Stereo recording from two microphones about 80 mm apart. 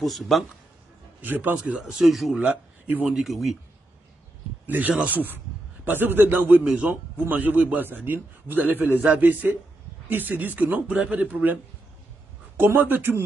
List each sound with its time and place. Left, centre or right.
0.0 s speech: centre
1.2 s speech: right; by 2.4 s centre
2.4 s speech: centre
3.2 s speech: centre
4.6 s a man's voice: right
12.5 s a man's voice: right